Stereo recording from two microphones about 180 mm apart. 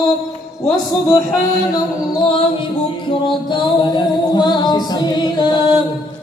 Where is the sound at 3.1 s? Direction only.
25° left (ahead or behind).